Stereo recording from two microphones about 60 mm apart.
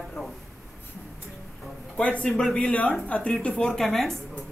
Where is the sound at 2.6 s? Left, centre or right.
Centre.